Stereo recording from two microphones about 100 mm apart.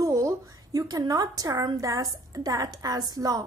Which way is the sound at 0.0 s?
30° right (ahead or behind).